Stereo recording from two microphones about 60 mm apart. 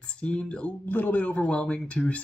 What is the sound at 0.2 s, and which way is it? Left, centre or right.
Speech, centre.